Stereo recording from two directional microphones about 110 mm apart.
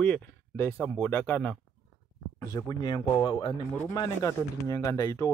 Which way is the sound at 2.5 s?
40° left (ahead or behind).